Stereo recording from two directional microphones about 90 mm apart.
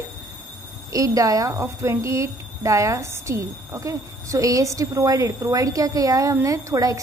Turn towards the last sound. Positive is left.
turn(degrees=-40)  # may be behind; listen again after turning